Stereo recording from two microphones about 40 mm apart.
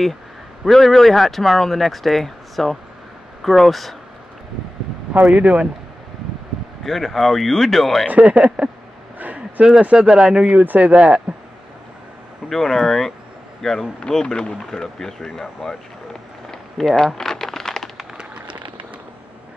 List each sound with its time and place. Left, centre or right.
0.7 s speech: centre
5.2 s speech: right
6.8 s speech: centre
8.1 s speech: right
10.5 s speech: right
12.4 s speech: centre
13.9 s speech: left
16.4 s a sound: centre